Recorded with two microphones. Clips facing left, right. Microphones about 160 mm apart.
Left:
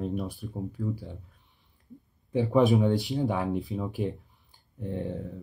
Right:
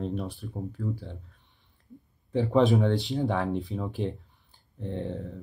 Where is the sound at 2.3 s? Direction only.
20° left (ahead or behind).